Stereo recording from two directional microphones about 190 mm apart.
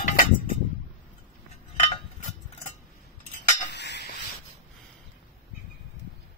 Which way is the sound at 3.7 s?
65° left (ahead or behind).